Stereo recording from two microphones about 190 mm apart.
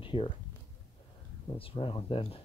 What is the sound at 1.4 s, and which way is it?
Speech, 30° left (ahead or behind).